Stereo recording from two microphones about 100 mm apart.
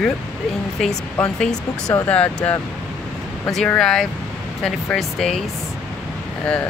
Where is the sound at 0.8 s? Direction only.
5° left (ahead or behind).